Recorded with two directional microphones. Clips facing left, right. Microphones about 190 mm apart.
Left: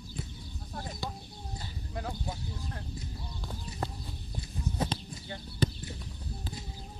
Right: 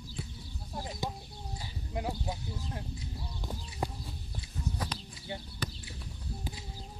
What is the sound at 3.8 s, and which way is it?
Horse, 10° right (ahead or behind).